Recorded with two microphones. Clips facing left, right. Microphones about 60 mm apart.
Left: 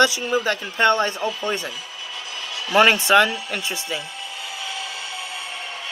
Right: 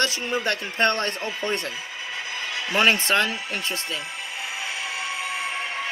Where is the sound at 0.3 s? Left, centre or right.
Centre.